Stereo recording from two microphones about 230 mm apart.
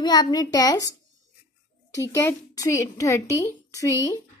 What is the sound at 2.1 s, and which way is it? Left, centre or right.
Speech, centre.